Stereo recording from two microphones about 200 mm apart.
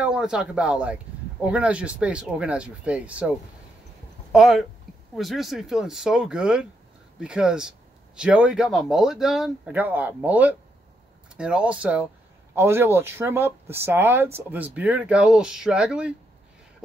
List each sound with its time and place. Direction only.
0.0 s speech: 5° right (ahead or behind)